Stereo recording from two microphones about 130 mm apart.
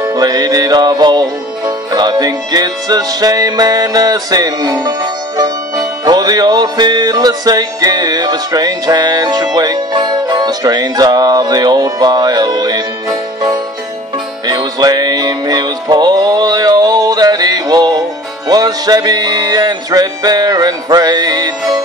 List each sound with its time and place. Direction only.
0.0 s music: 30° right (ahead or behind)
14.4 s music: 30° right (ahead or behind)